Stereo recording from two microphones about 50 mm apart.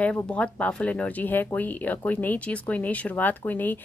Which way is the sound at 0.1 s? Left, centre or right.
Left.